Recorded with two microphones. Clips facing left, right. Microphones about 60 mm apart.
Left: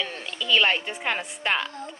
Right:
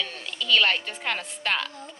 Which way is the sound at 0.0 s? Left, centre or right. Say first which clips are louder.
Left 1 dB; centre.